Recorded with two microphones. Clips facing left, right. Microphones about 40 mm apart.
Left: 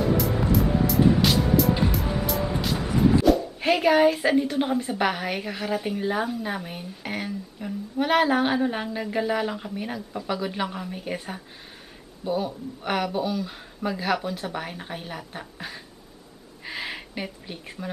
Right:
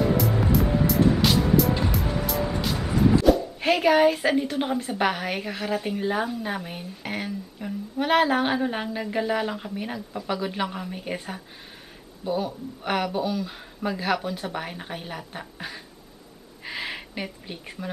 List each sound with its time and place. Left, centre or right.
0.0 s music: centre
3.3 s speech: centre